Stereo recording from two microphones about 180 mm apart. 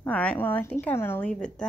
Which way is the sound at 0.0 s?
10° left (ahead or behind).